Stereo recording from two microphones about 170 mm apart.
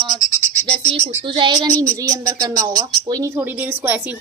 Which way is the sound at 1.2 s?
25° right (ahead or behind).